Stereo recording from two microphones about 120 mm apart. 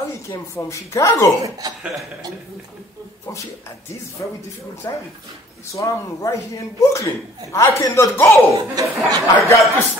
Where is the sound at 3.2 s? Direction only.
20° left (ahead or behind).